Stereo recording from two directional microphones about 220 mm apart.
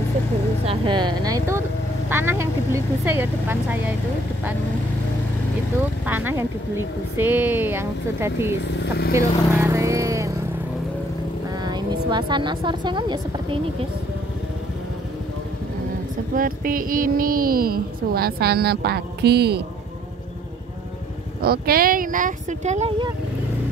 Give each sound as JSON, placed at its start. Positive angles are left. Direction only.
{"t": 0.7, "sound": "speech", "side_deg": -20}
{"t": 6.0, "sound": "speech", "side_deg": -10}
{"t": 11.6, "sound": "speech", "side_deg": -20}
{"t": 16.3, "sound": "a sound", "side_deg": -40}
{"t": 21.4, "sound": "speech", "side_deg": -45}